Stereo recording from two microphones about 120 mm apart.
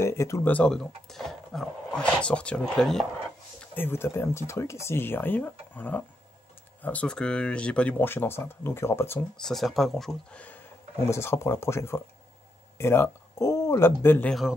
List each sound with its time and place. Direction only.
0.0 s a sound: 25° left (ahead or behind)
0.5 s speech: 10° left (ahead or behind)
3.7 s speech: 20° left (ahead or behind)
9.4 s speech: centre (ahead or behind)
11.1 s speech: 20° left (ahead or behind)